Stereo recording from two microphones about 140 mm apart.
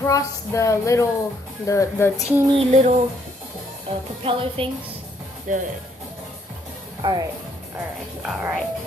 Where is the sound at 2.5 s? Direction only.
55° right (ahead or behind).